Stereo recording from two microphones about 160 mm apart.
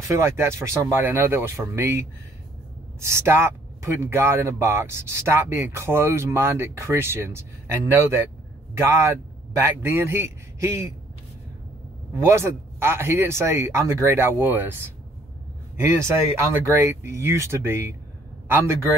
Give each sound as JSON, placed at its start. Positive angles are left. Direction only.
{"t": 0.1, "sound": "speech", "side_deg": -15}
{"t": 12.2, "sound": "speech", "side_deg": -15}
{"t": 15.7, "sound": "a man's voice", "side_deg": -15}